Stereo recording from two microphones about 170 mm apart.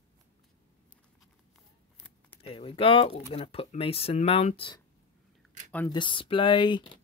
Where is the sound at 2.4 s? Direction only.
35° left (ahead or behind).